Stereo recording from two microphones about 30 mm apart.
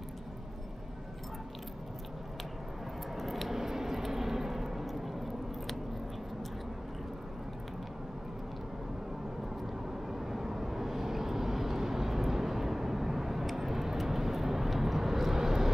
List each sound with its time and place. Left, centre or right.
3.2 s scissors: centre
10.0 s vehicle: centre